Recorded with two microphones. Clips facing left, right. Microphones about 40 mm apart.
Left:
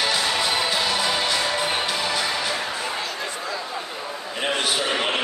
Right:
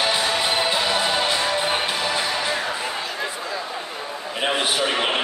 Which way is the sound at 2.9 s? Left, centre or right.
Centre.